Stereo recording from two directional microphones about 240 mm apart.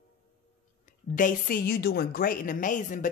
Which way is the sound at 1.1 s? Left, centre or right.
Left.